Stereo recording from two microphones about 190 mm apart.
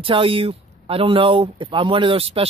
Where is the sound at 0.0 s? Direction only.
30° right (ahead or behind).